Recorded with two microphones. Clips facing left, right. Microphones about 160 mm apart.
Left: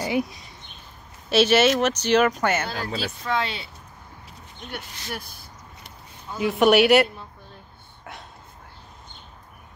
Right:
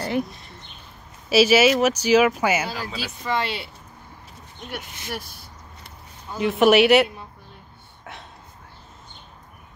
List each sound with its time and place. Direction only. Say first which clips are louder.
0.0 s speech: even; centre (ahead or behind)
2.7 s speech: left 2 dB; 60° left (ahead or behind)
3.3 s speech: right 2 dB; 5° right (ahead or behind)
6.3 s speech: right 1 dB; centre (ahead or behind)
8.0 s a sound: even; centre (ahead or behind)